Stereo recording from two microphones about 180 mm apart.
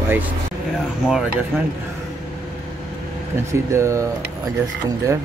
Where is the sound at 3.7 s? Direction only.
15° right (ahead or behind).